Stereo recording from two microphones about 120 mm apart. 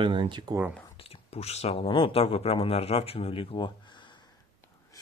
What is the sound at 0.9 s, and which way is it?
Speech, 55° left (ahead or behind).